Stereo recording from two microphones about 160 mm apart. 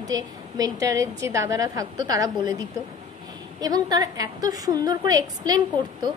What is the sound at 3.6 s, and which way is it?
A woman's voice, 25° right (ahead or behind).